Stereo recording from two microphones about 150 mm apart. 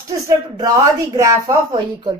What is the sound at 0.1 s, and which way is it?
A woman's voice, 25° right (ahead or behind).